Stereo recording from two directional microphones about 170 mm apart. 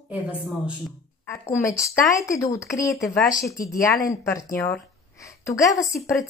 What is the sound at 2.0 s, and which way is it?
A woman's voice, 15° left (ahead or behind).